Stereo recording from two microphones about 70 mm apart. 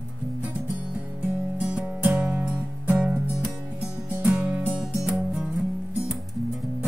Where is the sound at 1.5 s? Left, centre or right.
Centre.